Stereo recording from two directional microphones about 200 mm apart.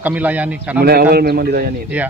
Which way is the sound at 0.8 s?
50° right (ahead or behind).